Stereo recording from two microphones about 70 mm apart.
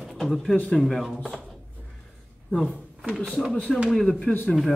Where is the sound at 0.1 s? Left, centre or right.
Centre.